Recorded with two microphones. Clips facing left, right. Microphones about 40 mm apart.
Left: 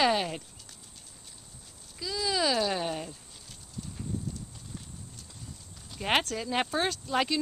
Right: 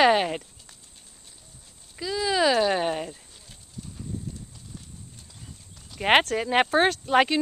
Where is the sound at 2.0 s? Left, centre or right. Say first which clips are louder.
Right 6 dB; right.